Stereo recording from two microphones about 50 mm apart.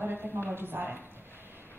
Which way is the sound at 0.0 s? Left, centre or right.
Right.